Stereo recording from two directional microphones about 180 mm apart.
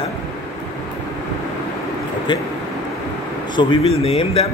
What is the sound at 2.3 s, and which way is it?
Speech, 25° left (ahead or behind).